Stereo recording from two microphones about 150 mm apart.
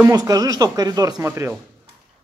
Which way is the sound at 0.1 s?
25° right (ahead or behind).